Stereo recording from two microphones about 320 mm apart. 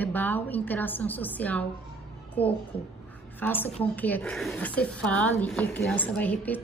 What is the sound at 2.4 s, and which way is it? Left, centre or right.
Speech, centre.